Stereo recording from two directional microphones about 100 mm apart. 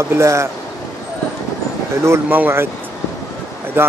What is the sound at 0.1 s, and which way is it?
Speech, 30° right (ahead or behind).